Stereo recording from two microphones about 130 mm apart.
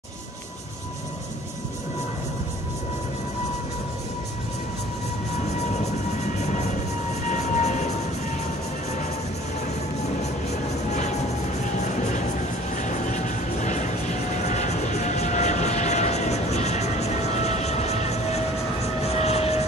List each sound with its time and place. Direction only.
7.2 s vehicle: 65° left (ahead or behind)
10.9 s vehicle: 60° left (ahead or behind)
11.8 s music: 70° left (ahead or behind)
12.7 s vehicle: 70° left (ahead or behind); by 19.6 s 55° left (ahead or behind)